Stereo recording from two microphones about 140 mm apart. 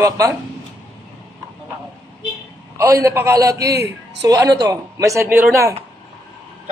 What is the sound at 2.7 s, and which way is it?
A woman's voice, 20° right (ahead or behind).